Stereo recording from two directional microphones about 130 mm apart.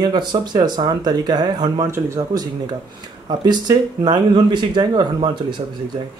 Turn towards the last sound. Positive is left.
turn(degrees=-35)  # may be behind; listen again after turning